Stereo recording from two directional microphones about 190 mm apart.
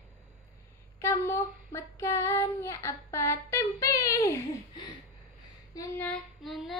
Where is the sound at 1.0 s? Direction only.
15° left (ahead or behind).